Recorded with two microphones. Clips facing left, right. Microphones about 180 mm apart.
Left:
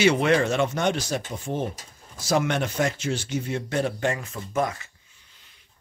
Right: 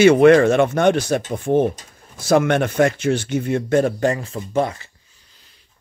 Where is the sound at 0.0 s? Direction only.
55° right (ahead or behind); by 4.9 s 30° right (ahead or behind).